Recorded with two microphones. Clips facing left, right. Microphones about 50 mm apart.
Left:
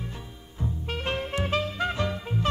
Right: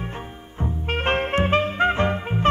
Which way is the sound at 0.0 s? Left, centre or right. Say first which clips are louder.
Right 7 dB; right.